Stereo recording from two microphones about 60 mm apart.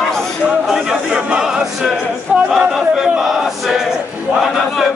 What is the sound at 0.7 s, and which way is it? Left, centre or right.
Speech, centre.